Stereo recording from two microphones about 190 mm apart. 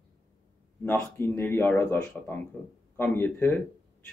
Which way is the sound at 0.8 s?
10° left (ahead or behind).